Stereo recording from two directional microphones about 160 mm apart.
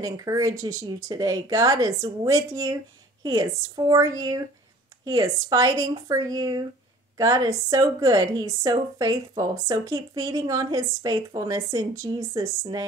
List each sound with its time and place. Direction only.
0.0 s a woman's voice: 20° right (ahead or behind)